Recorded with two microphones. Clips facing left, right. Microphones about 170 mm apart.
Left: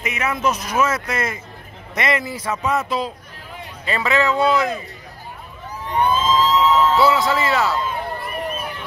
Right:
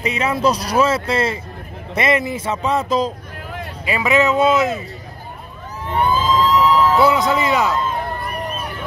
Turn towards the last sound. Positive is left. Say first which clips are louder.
# right 2 dB
turn(degrees=-15)  # may be behind; listen again after turning